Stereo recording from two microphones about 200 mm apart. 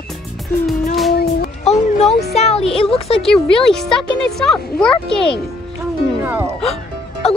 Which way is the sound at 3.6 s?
5° left (ahead or behind).